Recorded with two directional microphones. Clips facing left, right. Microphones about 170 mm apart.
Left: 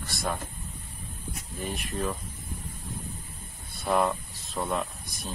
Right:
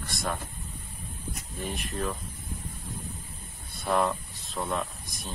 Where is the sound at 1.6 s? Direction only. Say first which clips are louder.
Left 1 dB; centre (ahead or behind).